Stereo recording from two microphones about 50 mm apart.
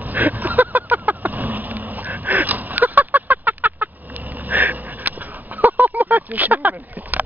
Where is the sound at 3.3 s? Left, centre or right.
Right.